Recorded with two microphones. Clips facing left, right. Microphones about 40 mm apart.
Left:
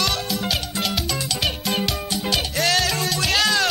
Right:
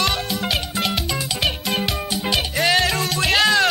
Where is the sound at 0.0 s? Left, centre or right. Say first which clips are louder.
Right 2 dB; centre.